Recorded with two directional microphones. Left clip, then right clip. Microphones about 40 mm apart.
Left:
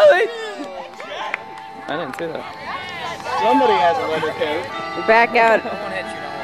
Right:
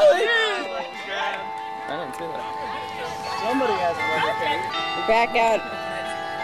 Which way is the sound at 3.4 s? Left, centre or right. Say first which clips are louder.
Left 8 dB; left.